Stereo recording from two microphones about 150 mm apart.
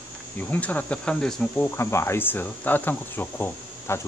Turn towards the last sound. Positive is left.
turn(degrees=15)  # may be behind; listen again after turning